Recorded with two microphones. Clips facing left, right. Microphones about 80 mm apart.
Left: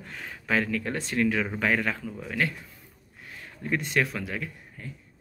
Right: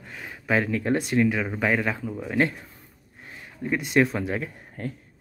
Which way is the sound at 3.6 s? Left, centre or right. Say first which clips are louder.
Right 5 dB; centre.